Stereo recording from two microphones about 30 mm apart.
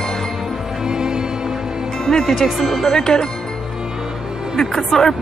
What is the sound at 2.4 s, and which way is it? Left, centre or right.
Speech, centre.